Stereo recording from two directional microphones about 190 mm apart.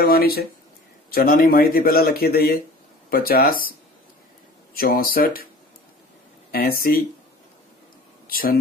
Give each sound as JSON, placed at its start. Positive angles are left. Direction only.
{"t": 0.0, "sound": "a man's voice", "side_deg": 50}
{"t": 4.7, "sound": "a man's voice", "side_deg": 50}
{"t": 6.5, "sound": "a man's voice", "side_deg": 50}
{"t": 8.3, "sound": "speech", "side_deg": 50}